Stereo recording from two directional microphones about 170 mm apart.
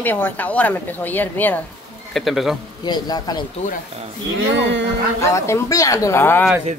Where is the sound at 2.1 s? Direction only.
Centre (ahead or behind).